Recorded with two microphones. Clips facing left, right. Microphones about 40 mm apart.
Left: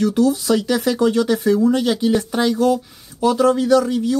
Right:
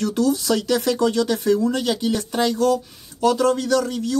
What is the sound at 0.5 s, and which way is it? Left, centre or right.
A man's voice, left.